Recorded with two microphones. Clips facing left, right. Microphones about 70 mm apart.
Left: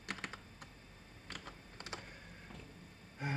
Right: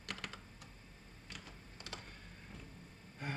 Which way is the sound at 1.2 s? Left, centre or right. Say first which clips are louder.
Left 4 dB; left.